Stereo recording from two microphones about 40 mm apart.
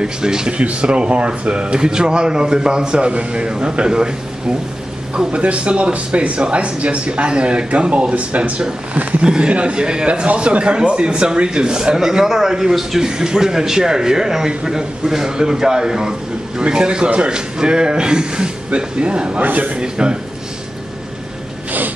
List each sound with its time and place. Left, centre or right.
0.0 s speech: centre
0.5 s a man's voice: right
5.1 s a man's voice: right
19.4 s a man's voice: right
19.8 s a man's voice: right